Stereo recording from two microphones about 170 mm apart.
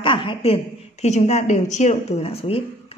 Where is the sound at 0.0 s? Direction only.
30° left (ahead or behind).